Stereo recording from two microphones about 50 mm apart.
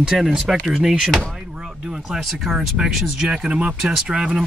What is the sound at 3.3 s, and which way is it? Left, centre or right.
Speech, right.